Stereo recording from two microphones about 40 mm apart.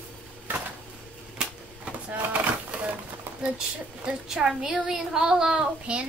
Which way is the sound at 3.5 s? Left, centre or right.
Centre.